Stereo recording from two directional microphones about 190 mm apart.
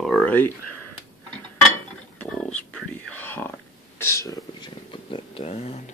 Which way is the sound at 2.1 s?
5° left (ahead or behind).